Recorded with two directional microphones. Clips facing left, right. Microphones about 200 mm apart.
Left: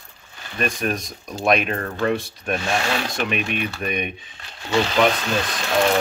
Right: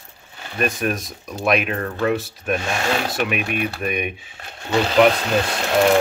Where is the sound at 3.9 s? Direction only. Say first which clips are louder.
Right 1 dB; 5° right (ahead or behind).